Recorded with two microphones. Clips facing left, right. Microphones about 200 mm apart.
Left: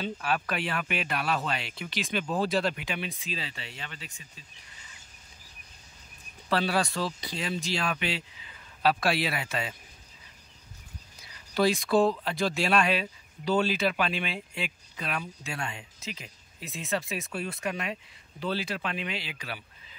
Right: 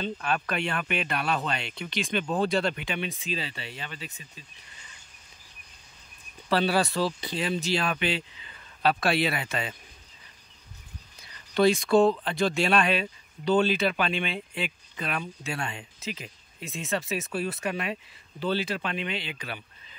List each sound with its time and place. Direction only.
0.0 s speech: 5° left (ahead or behind)
6.5 s speech: centre (ahead or behind)
7.0 s speech: 25° right (ahead or behind)
7.3 s speech: centre (ahead or behind)
11.5 s speech: centre (ahead or behind)